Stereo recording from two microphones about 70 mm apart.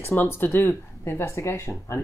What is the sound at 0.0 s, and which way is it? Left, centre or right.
Speech, left.